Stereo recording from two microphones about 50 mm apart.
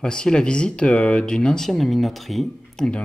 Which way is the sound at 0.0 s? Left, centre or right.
Centre.